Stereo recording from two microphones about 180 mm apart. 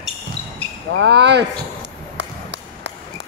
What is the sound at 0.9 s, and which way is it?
Speech, 75° right (ahead or behind).